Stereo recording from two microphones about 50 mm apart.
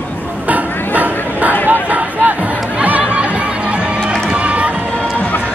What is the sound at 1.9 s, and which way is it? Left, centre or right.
Music, right.